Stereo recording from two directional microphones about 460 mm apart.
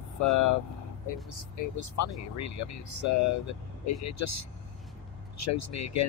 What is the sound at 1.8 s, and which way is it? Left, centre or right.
Speech, left.